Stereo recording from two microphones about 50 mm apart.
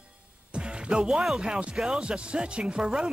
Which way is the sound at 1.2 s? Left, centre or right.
Centre.